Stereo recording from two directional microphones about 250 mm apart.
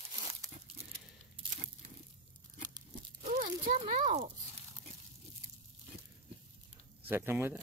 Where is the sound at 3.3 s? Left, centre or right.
Right.